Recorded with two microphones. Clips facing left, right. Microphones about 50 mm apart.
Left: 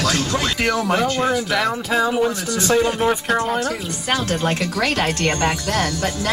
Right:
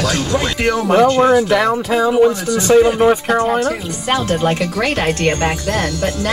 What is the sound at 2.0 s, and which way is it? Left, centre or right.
Speech, centre.